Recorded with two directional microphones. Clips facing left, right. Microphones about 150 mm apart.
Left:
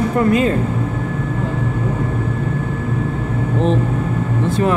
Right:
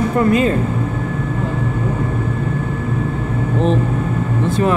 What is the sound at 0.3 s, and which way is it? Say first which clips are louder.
Speech: even; 30° right (ahead or behind).